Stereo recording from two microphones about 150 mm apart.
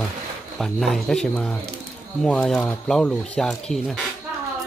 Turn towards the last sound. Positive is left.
turn(degrees=0)  # may be behind; listen again after turning